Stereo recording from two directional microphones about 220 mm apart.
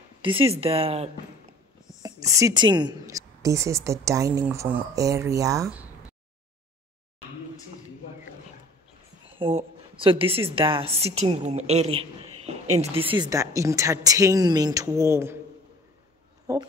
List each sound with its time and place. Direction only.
0.2 s a woman's voice: 25° right (ahead or behind)
2.0 s a woman's voice: 15° right (ahead or behind)
9.4 s a woman's voice: 25° right (ahead or behind); by 15.3 s 10° right (ahead or behind)